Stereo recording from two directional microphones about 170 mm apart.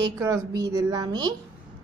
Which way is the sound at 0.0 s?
20° right (ahead or behind).